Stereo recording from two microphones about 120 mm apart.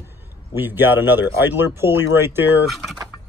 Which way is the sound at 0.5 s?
15° right (ahead or behind).